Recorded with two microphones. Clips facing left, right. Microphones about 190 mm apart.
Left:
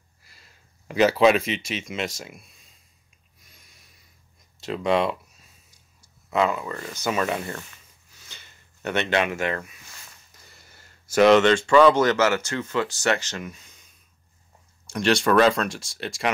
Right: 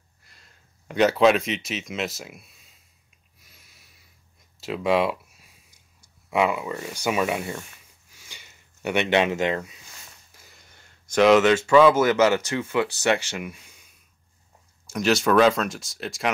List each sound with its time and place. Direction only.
0.2 s speech: 5° left (ahead or behind)
3.4 s a sound: 5° right (ahead or behind)
6.3 s speech: 10° right (ahead or behind)
8.1 s a sound: 10° right (ahead or behind)
10.4 s speech: centre (ahead or behind)
14.9 s speech: 5° right (ahead or behind)